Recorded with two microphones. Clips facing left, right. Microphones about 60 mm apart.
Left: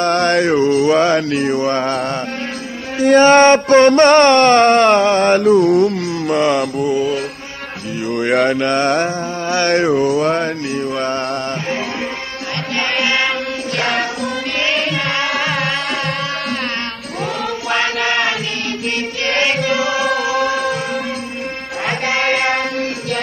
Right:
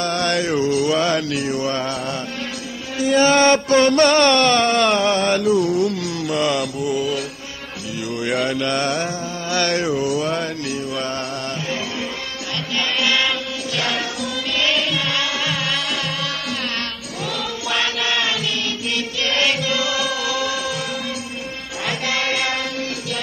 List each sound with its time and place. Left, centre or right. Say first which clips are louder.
0.0 s mantra: left 6 dB; left
3.0 s a sound: left 6 dB; left
8.1 s a sound: left 7 dB; left
12.7 s mantra: left 3 dB; left
13.7 s music: left 5 dB; left
17.6 s chant: left 4 dB; left
19.2 s music: left 4 dB; left
21.8 s music: left 5 dB; left